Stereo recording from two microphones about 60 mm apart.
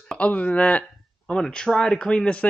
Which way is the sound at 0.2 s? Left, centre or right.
Left.